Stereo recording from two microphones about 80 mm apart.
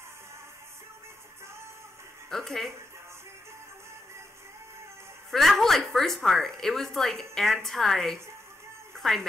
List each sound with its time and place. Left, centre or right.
2.2 s speech: centre
5.3 s a woman's voice: centre
8.9 s music: centre